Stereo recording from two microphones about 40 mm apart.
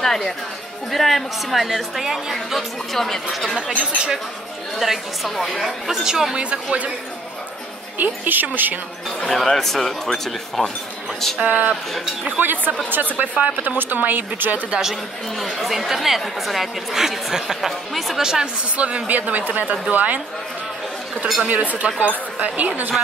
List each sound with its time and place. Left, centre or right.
0.0 s music: centre
0.9 s a woman's voice: centre
2.9 s a woman's voice: centre
3.5 s speech: right
4.7 s a woman's voice: centre
6.0 s speech: centre
6.3 s speech: right
8.0 s speech: right
9.2 s speech: centre
11.4 s speech: right
14.8 s a woman's voice: centre
18.2 s speech: centre
18.8 s speech: right
21.5 s speech: right